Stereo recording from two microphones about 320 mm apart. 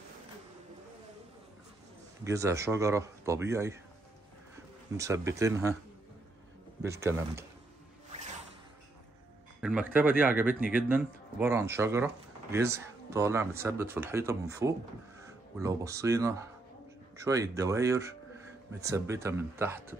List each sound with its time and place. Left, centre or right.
2.2 s speech: centre
4.9 s speech: centre
6.8 s speech: centre
8.1 s zipper: right
9.6 s speech: centre